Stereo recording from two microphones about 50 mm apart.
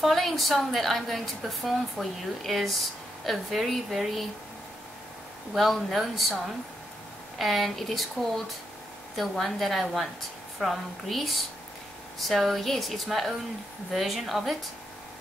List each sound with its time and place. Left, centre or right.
0.0 s speech: centre
5.6 s speech: centre
7.3 s speech: centre
9.1 s speech: centre